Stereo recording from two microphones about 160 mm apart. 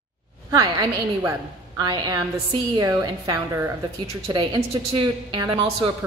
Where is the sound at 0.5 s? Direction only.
20° right (ahead or behind).